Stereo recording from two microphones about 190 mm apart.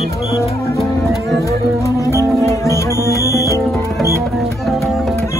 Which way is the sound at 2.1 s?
15° left (ahead or behind).